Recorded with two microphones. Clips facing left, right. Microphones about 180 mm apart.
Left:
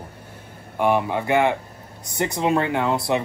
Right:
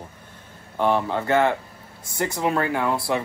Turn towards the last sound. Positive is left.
turn(degrees=20)  # may be behind; listen again after turning